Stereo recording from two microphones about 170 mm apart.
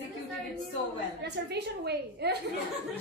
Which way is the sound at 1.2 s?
75° right (ahead or behind).